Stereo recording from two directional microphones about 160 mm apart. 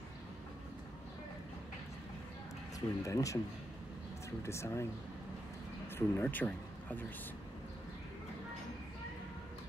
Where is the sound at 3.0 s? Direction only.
20° left (ahead or behind).